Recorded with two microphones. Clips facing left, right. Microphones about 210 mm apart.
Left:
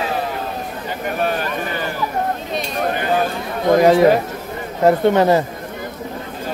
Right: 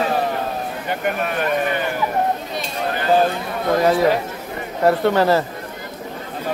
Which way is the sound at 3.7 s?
20° left (ahead or behind).